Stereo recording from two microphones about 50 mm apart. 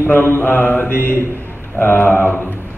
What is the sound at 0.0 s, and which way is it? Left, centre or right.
A man's voice, left.